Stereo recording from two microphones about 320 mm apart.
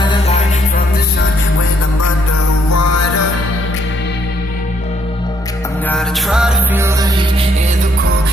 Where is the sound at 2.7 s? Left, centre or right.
Left.